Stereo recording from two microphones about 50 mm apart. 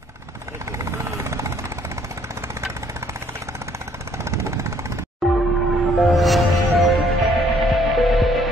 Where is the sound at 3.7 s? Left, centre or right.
Right.